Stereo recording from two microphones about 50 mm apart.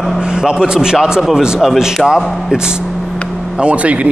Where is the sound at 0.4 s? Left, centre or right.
Centre.